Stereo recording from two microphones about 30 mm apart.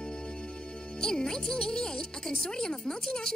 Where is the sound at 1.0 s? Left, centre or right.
Left.